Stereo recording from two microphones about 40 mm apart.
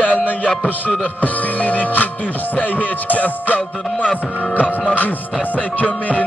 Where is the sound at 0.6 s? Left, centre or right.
Left.